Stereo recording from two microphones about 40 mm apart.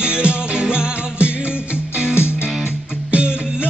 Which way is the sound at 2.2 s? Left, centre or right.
Left.